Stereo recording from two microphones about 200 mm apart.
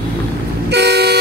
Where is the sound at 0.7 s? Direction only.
55° right (ahead or behind).